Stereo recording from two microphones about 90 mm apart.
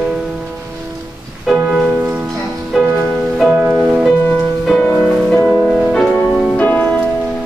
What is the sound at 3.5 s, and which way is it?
Music, 20° right (ahead or behind).